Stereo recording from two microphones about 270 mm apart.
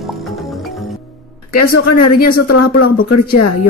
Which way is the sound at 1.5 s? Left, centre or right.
Left.